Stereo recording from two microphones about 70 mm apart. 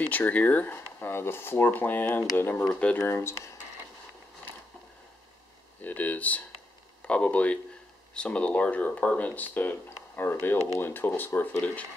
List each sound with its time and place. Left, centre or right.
0.0 s speech: left
2.6 s speech: centre
3.0 s speech: left
5.8 s speech: left